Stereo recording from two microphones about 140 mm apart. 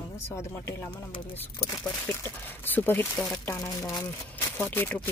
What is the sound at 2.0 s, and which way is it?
Speech, 15° left (ahead or behind).